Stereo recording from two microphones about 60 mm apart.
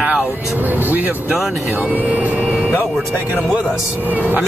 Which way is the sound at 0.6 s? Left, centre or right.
Right.